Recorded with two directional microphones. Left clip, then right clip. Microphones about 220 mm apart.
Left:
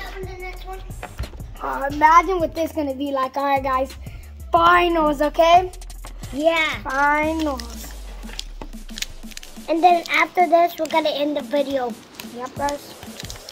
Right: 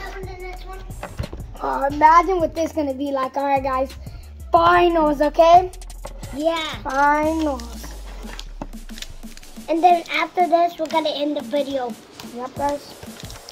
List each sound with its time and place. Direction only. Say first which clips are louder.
1.2 s a child's voice: right 3 dB; centre (ahead or behind)
5.7 s a sound: right 2 dB; centre (ahead or behind)
6.4 s a child's voice: left 4 dB; 25° left (ahead or behind)
6.8 s a child's voice: right 1 dB; centre (ahead or behind)
9.7 s a child's voice: even; 20° left (ahead or behind)
12.6 s a child's voice: right 1 dB; centre (ahead or behind)